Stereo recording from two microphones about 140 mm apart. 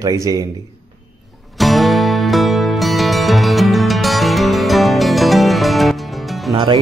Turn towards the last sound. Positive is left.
turn(degrees=-35)  # may be behind; listen again after turning